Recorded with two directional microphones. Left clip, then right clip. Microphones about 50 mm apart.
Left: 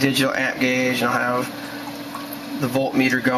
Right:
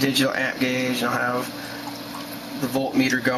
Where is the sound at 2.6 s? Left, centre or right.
Right.